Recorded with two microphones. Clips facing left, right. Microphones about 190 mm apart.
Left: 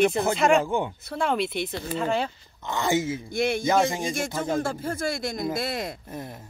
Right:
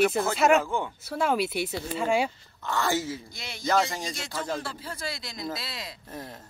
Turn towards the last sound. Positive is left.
turn(degrees=50)  # may be behind; listen again after turning